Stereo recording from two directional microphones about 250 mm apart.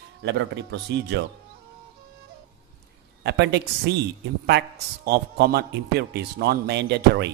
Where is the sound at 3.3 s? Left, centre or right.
Right.